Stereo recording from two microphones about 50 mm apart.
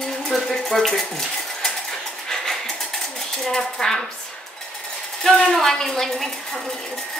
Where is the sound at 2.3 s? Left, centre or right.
Centre.